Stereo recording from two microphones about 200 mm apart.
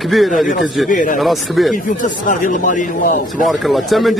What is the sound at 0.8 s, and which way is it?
Speech, 40° left (ahead or behind).